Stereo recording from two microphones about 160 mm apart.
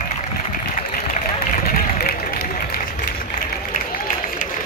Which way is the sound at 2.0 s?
70° left (ahead or behind).